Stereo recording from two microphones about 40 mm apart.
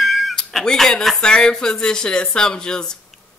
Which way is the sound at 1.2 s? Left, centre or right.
Left.